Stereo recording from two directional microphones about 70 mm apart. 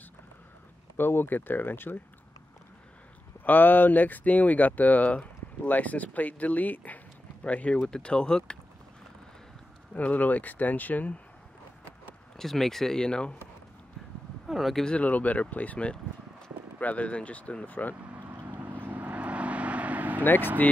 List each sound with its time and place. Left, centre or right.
0.9 s speech: left
3.4 s speech: left
9.9 s speech: left
12.4 s speech: centre
14.5 s speech: centre
14.9 s speech: centre
18.1 s vehicle: right